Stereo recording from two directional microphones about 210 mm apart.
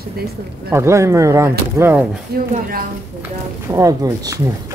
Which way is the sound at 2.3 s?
45° right (ahead or behind).